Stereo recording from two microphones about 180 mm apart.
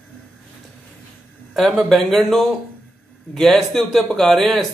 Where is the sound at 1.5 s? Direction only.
Centre (ahead or behind).